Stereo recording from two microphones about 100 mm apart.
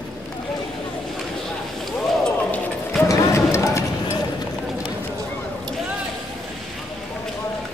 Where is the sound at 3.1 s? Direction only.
30° left (ahead or behind).